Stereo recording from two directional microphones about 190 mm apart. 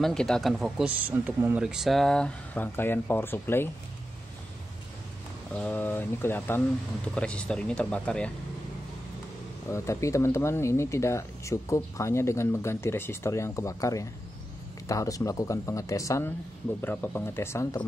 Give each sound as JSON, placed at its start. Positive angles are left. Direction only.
{"t": 0.0, "sound": "speech", "side_deg": 0}
{"t": 5.5, "sound": "speech", "side_deg": 10}
{"t": 9.7, "sound": "speech", "side_deg": 15}